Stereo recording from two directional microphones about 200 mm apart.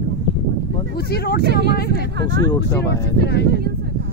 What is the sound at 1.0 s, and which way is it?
Speech, 50° left (ahead or behind).